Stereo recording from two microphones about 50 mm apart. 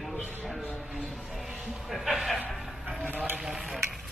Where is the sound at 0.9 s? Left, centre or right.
Centre.